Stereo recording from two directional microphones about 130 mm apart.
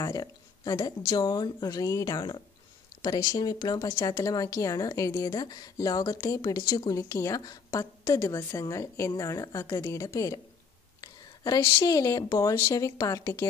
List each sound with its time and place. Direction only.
0.0 s a woman's voice: 25° left (ahead or behind)
11.0 s a sound: 30° left (ahead or behind)
11.8 s a woman's voice: 30° left (ahead or behind)